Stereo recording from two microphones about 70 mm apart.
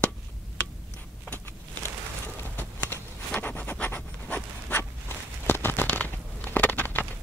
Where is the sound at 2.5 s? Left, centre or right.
Left.